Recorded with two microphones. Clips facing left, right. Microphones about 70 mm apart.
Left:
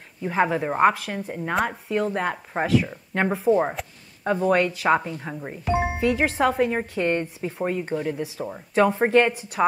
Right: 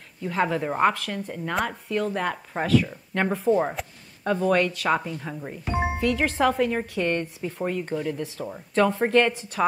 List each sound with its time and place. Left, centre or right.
0.2 s speech: centre